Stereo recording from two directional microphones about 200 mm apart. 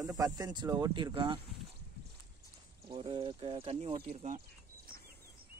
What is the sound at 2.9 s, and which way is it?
Speech, 25° right (ahead or behind).